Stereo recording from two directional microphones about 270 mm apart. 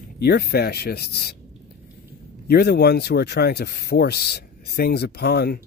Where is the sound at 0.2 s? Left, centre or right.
Left.